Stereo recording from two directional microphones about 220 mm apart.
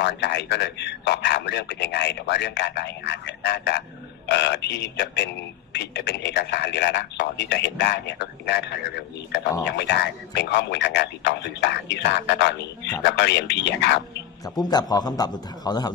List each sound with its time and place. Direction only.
0.0 s a man's voice: 50° left (ahead or behind)
14.4 s a man's voice: 15° left (ahead or behind)